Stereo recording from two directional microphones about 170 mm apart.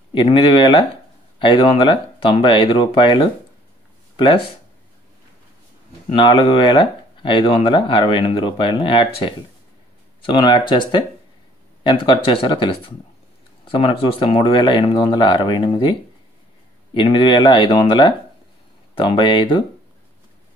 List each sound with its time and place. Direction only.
0.1 s speech: 30° left (ahead or behind)
6.1 s speech: 30° left (ahead or behind)
10.2 s speech: 30° left (ahead or behind)